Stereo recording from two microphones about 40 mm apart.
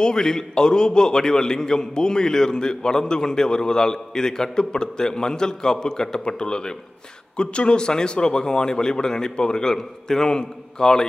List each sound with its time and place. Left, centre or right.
0.0 s a man's voice: centre